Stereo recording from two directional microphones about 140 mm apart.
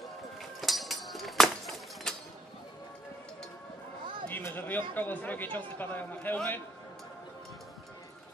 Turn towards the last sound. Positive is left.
turn(degrees=15)  # may be behind; listen again after turning